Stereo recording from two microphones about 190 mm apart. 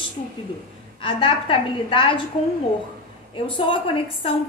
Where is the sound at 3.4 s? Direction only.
25° left (ahead or behind).